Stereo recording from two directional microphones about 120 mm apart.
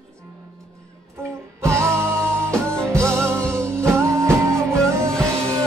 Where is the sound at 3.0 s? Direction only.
20° right (ahead or behind).